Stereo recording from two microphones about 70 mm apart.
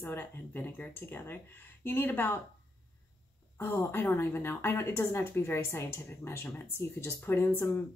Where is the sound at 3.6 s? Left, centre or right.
Left.